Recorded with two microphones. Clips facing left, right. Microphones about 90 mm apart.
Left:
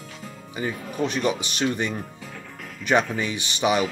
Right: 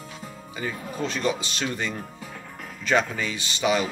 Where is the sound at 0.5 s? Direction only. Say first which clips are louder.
Left 3 dB; 15° left (ahead or behind).